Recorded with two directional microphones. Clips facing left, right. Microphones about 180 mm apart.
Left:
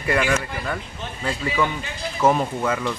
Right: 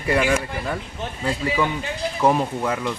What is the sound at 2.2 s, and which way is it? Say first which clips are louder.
Speech: left 1 dB; 15° right (ahead or behind).